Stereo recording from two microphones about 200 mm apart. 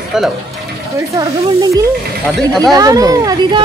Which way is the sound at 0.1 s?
5° right (ahead or behind).